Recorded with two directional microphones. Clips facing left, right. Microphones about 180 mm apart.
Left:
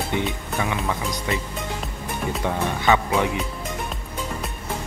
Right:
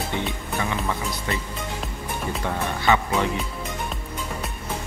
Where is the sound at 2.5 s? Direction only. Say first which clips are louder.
Left 1 dB; 15° left (ahead or behind).